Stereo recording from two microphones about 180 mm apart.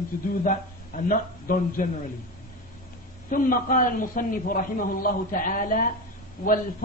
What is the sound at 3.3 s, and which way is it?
A man's voice, 50° left (ahead or behind).